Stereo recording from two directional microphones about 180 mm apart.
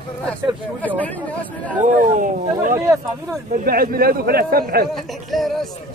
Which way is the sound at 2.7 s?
15° right (ahead or behind).